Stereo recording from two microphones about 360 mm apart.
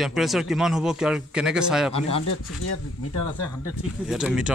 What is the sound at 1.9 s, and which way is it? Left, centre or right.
Speech, centre.